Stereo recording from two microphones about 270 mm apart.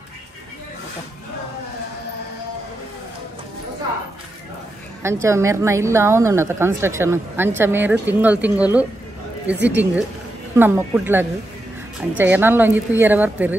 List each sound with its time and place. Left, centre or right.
5.0 s a woman's voice: centre